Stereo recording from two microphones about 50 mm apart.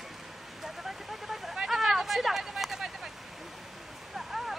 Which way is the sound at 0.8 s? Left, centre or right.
Centre.